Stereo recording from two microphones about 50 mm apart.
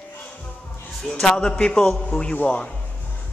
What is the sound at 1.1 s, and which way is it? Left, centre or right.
A man's voice, centre.